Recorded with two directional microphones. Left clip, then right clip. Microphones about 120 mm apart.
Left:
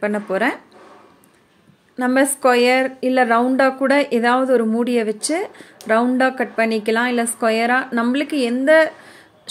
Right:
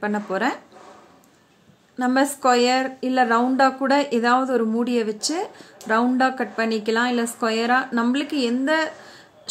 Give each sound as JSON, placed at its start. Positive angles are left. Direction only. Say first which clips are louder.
{"t": 0.0, "sound": "speech", "louder": "left 4 dB", "side_deg": 15}
{"t": 2.0, "sound": "speech", "louder": "left 3 dB", "side_deg": 15}